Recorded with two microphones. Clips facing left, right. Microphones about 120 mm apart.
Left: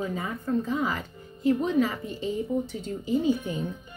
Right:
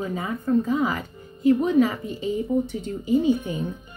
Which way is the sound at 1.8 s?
15° right (ahead or behind).